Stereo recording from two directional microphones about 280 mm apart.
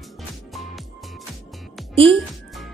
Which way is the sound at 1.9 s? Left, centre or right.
Centre.